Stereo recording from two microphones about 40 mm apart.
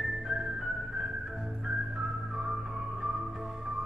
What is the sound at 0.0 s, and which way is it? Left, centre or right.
Music, centre.